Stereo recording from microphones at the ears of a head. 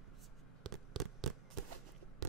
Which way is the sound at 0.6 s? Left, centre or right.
Right.